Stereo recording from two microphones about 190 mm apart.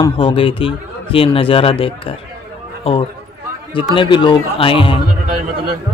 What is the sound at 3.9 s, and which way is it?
A man's voice, 25° left (ahead or behind).